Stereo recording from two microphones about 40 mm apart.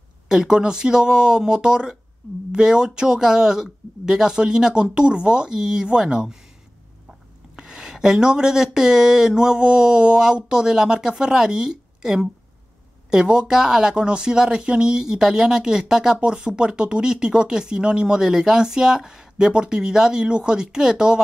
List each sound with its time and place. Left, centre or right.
0.3 s speech: centre
7.5 s a sound: centre
8.7 s speech: centre